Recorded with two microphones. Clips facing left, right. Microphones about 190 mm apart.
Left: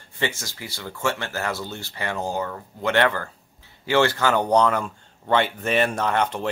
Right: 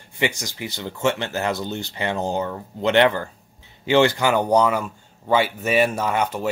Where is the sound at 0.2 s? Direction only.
15° right (ahead or behind).